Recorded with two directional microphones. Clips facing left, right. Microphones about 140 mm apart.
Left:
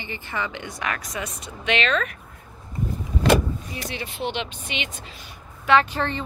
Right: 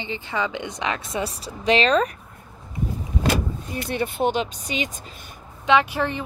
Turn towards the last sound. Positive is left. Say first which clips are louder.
# even
turn(degrees=-10)  # may be behind; listen again after turning